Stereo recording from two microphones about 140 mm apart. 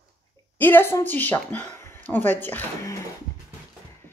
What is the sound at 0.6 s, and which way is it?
Speech, 15° left (ahead or behind).